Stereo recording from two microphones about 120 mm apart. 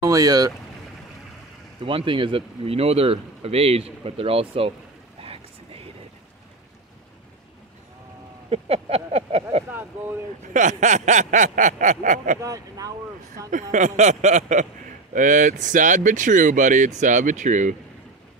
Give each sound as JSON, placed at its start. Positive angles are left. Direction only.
{"t": 0.0, "sound": "speech", "side_deg": -30}
{"t": 1.8, "sound": "speech", "side_deg": -45}
{"t": 5.2, "sound": "a sound", "side_deg": -50}
{"t": 8.5, "sound": "speech", "side_deg": -55}
{"t": 9.7, "sound": "speech", "side_deg": -15}
{"t": 10.5, "sound": "speech", "side_deg": -90}
{"t": 12.4, "sound": "speech", "side_deg": -25}
{"t": 13.5, "sound": "speech", "side_deg": -90}